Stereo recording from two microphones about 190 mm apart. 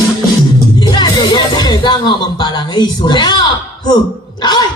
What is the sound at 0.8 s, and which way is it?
Speech, 25° left (ahead or behind).